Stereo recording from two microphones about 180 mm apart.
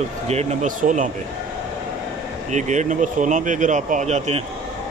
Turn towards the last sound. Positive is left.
turn(degrees=-40)  # may be behind; listen again after turning